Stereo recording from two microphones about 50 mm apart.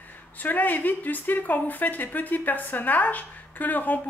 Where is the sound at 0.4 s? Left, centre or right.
Left.